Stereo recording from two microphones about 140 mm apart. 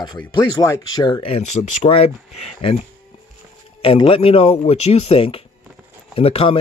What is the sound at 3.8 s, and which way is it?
Speech, 40° left (ahead or behind).